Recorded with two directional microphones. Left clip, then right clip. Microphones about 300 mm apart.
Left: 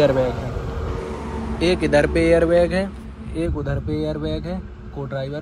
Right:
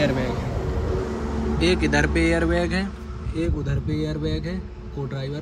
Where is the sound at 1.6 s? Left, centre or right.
Centre.